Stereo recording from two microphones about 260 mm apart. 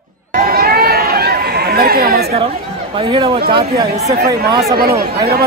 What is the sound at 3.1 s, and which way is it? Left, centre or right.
Speech, centre.